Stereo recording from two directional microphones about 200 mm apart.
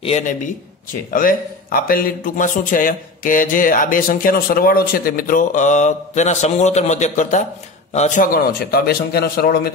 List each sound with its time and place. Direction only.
1.1 s speech: 45° left (ahead or behind)